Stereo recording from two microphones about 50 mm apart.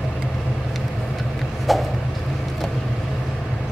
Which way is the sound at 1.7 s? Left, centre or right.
Centre.